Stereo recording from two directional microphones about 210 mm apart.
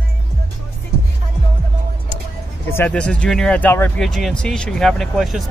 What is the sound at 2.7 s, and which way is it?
Speech, 5° left (ahead or behind).